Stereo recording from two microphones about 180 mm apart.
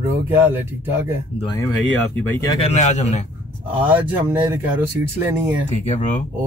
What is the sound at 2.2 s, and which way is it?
Speech, 15° left (ahead or behind).